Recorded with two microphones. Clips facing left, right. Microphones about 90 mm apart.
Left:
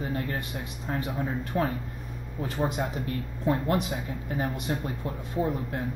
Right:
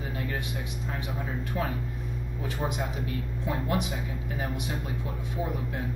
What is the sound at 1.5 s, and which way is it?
Speech, 35° left (ahead or behind).